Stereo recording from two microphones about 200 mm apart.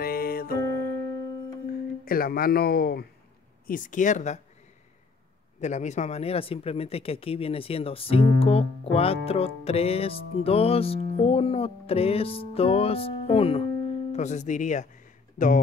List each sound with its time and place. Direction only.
0.0 s music: 50° left (ahead or behind)
0.7 s music: 55° right (ahead or behind)
2.0 s speech: 45° left (ahead or behind)
5.6 s speech: 35° left (ahead or behind)